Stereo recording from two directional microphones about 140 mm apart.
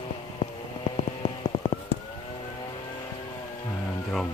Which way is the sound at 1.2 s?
45° left (ahead or behind).